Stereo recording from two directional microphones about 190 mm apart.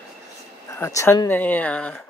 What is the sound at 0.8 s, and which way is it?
Speech, 15° left (ahead or behind).